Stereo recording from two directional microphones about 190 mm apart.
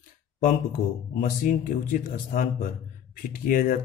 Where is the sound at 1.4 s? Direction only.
45° left (ahead or behind).